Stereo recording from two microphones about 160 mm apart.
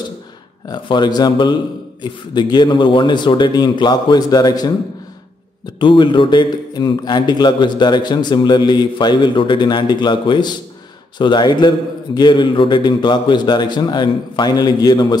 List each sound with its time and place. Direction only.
0.7 s speech: 30° left (ahead or behind)
5.8 s speech: 30° left (ahead or behind)